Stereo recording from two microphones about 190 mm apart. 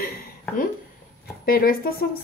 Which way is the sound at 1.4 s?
50° left (ahead or behind).